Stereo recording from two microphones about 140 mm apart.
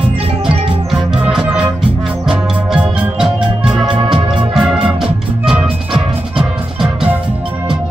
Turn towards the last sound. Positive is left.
turn(degrees=-5)  # may be behind; listen again after turning